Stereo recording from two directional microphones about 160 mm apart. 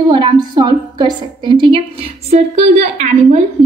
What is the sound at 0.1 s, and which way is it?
A woman's voice, 30° right (ahead or behind).